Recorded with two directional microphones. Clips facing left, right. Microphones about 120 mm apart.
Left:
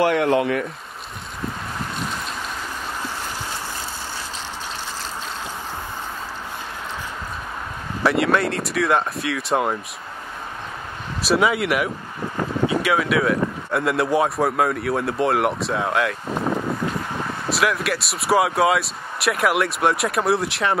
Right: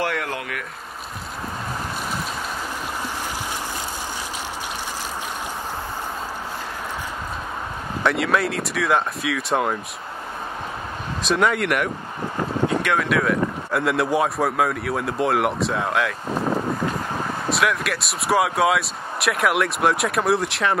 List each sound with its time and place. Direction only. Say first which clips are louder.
0.0 s speech: left 8 dB; 20° left (ahead or behind)
8.0 s speech: left 2 dB; centre (ahead or behind)
11.2 s speech: left 1 dB; 5° left (ahead or behind)
17.5 s speech: left 1 dB; centre (ahead or behind)